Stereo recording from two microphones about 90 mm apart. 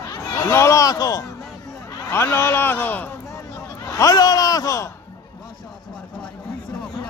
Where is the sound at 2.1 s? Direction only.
30° left (ahead or behind).